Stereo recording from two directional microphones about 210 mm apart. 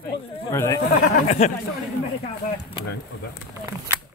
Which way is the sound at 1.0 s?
35° left (ahead or behind).